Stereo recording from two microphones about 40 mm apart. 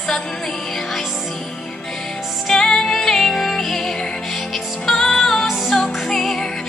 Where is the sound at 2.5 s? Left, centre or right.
Centre.